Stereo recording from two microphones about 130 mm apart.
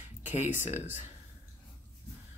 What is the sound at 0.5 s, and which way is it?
Speech, 65° left (ahead or behind).